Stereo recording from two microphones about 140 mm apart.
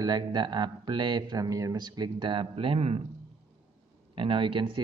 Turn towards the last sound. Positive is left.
turn(degrees=-35)  # may be behind; listen again after turning